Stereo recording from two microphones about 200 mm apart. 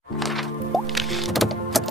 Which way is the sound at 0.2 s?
Centre (ahead or behind).